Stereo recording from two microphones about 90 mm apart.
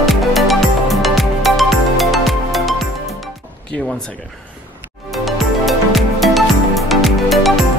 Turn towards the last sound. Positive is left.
turn(degrees=0)  # may be behind; listen again after turning